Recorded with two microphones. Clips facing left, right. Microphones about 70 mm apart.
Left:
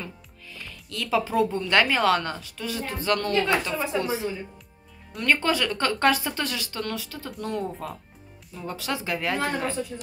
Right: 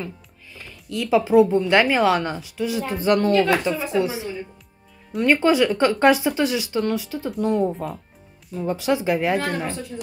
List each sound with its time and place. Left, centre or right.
0.5 s speech: centre
3.3 s speech: centre
7.7 s speech: centre
8.5 s speech: centre